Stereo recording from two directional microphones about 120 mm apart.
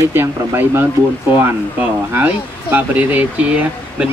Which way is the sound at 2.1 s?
15° right (ahead or behind).